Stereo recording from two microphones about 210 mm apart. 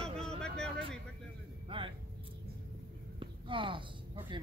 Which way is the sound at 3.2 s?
25° right (ahead or behind).